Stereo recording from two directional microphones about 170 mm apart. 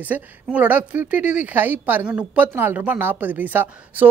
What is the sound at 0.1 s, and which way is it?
A woman's voice, 10° right (ahead or behind).